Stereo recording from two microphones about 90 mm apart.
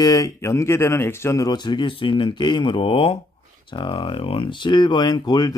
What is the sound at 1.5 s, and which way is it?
Speech, 55° left (ahead or behind).